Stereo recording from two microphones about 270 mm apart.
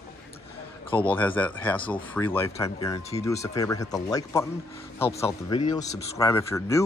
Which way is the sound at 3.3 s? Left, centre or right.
Centre.